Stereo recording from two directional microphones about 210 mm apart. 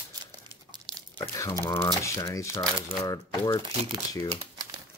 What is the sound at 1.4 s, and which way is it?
Speech, 15° left (ahead or behind).